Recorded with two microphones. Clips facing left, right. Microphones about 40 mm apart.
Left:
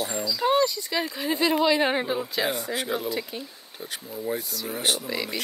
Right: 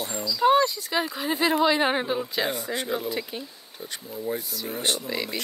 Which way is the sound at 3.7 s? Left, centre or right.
Centre.